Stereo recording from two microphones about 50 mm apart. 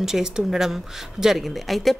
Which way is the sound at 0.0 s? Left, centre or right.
Centre.